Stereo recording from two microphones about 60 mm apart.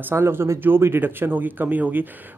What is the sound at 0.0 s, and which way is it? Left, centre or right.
Speech, right.